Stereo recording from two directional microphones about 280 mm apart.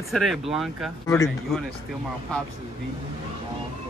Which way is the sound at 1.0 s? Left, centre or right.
Centre.